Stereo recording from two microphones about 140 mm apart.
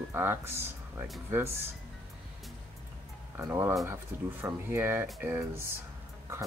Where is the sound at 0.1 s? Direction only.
15° right (ahead or behind).